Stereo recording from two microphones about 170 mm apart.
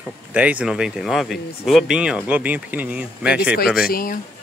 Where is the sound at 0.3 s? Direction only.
10° right (ahead or behind).